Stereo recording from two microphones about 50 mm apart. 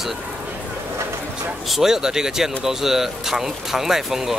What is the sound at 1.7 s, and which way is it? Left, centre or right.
Speech, centre.